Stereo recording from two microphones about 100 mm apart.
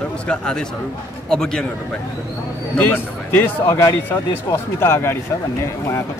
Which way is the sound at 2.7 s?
20° left (ahead or behind).